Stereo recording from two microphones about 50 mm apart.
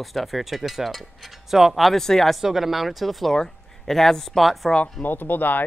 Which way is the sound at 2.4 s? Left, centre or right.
Centre.